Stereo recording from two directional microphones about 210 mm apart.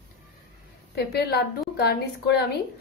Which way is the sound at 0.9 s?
50° left (ahead or behind).